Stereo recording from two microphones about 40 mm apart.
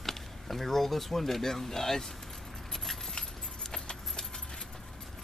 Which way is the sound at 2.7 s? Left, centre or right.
Centre.